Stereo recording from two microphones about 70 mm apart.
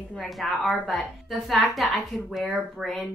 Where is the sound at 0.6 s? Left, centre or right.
Centre.